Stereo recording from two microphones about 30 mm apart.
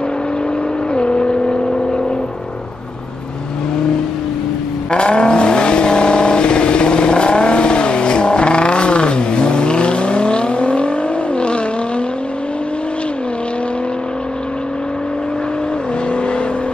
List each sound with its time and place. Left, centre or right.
0.9 s vehicle: left
4.9 s vehicle: left